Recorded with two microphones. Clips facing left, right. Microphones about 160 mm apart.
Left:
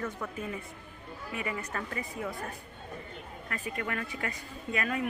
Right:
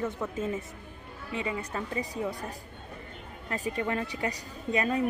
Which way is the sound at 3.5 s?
30° right (ahead or behind).